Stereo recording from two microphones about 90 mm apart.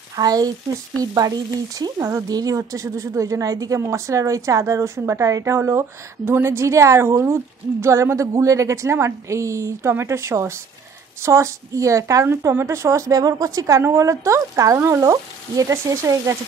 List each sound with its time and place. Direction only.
0.1 s speech: 45° right (ahead or behind)